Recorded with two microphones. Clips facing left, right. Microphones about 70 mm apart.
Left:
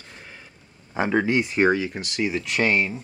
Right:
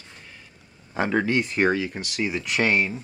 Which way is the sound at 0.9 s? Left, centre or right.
Centre.